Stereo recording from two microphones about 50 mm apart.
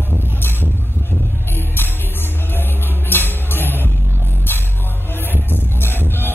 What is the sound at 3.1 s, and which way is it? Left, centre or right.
Music, left.